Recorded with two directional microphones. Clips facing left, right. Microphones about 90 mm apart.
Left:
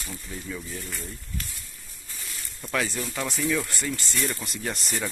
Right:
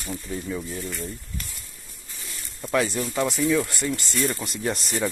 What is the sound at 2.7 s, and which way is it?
Speech, 30° right (ahead or behind).